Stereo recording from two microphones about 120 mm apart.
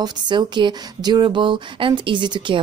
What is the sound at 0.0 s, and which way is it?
Speech, 35° right (ahead or behind).